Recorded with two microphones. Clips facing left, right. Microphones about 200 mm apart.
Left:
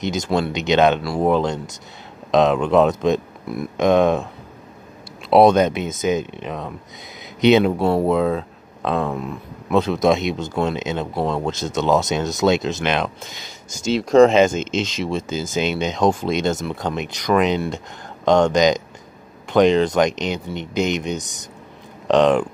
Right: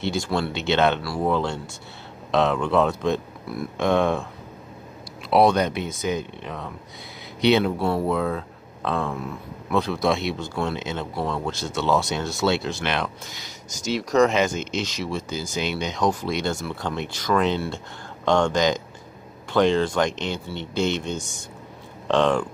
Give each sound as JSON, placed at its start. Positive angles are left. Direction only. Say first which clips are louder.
{"t": 0.0, "sound": "speech", "louder": "left 4 dB", "side_deg": 20}
{"t": 5.3, "sound": "speech", "louder": "left 5 dB", "side_deg": 20}